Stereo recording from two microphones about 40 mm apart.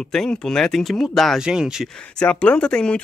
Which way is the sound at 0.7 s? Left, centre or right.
Centre.